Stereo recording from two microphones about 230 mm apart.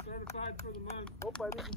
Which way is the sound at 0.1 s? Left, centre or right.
Left.